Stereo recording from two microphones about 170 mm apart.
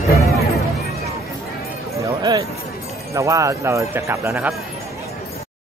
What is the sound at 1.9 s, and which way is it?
Music, 20° right (ahead or behind).